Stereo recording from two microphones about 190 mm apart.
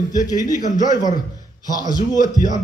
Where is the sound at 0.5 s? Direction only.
40° left (ahead or behind).